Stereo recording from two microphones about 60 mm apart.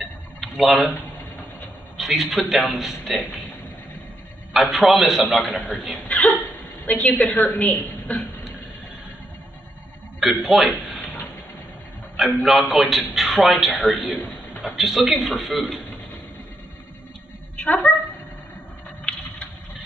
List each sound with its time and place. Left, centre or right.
0.4 s speech: centre
2.0 s a man's voice: centre
4.6 s a man's voice: centre
6.9 s a woman's voice: left
10.2 s a man's voice: centre
12.4 s a man's voice: centre
17.6 s a woman's voice: left
19.1 s patter: centre